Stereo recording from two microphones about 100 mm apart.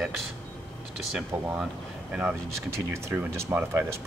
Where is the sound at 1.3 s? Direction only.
15° right (ahead or behind).